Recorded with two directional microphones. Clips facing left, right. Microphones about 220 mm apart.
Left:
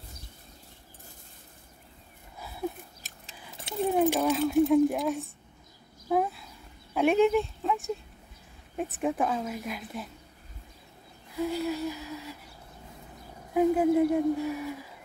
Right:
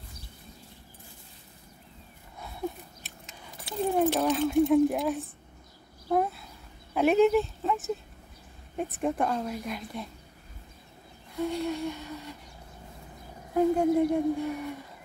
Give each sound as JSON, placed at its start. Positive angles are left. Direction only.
{"t": 3.0, "sound": "a sound", "side_deg": 40}
{"t": 3.7, "sound": "keys jangling", "side_deg": 20}
{"t": 4.2, "sound": "speech", "side_deg": 0}
{"t": 6.1, "sound": "a sound", "side_deg": 0}
{"t": 8.7, "sound": "speech", "side_deg": 0}
{"t": 11.3, "sound": "speech", "side_deg": 0}
{"t": 13.6, "sound": "speech", "side_deg": 5}